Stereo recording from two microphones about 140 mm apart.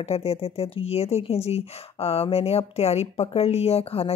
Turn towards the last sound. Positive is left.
turn(degrees=45)  # may be behind; listen again after turning